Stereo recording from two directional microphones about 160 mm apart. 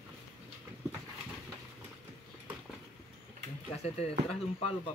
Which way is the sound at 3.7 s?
40° left (ahead or behind).